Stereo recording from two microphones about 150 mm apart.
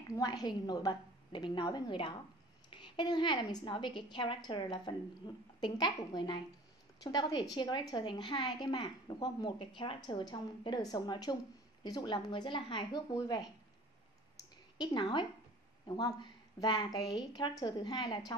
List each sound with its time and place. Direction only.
0.1 s a woman's voice: 25° left (ahead or behind)
14.8 s a woman's voice: 30° left (ahead or behind)